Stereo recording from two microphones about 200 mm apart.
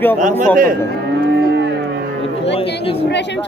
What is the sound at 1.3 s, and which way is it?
Cattle, 60° right (ahead or behind).